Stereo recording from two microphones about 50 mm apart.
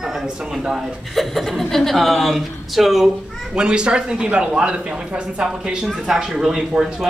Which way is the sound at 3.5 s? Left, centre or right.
Centre.